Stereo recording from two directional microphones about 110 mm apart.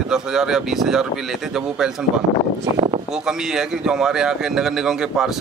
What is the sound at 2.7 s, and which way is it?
Speech, 55° right (ahead or behind).